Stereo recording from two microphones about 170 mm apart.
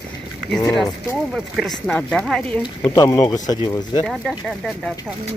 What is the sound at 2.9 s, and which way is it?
Speech, 20° left (ahead or behind).